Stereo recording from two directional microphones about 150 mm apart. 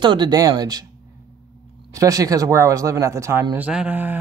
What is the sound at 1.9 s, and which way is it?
Speech, 25° right (ahead or behind).